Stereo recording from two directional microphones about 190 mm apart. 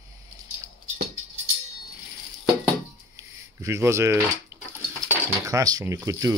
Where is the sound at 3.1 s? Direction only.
15° right (ahead or behind).